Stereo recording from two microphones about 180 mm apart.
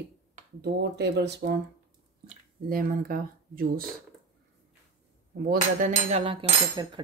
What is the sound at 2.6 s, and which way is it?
Speech, 50° right (ahead or behind).